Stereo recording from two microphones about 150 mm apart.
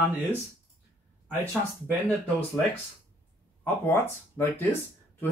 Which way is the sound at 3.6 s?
15° left (ahead or behind).